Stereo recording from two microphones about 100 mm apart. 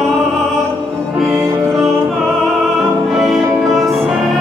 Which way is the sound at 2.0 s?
Centre (ahead or behind).